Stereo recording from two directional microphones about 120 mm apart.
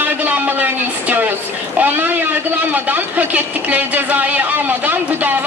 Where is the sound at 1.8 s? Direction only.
15° right (ahead or behind).